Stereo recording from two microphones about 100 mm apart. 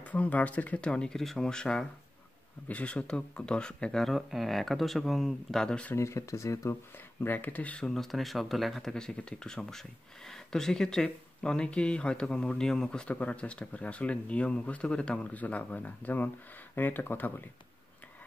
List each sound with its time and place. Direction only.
0.0 s speech: 15° left (ahead or behind)
5.9 s speech: 30° left (ahead or behind)